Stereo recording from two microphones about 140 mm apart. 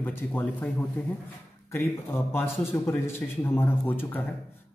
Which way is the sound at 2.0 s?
15° left (ahead or behind).